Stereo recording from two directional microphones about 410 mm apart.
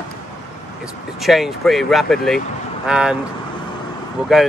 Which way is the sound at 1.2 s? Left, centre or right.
Centre.